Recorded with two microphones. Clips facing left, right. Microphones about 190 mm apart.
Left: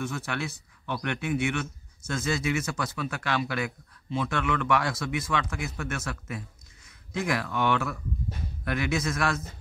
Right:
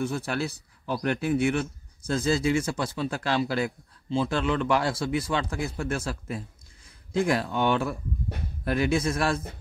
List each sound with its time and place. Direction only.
0.0 s speech: 30° right (ahead or behind)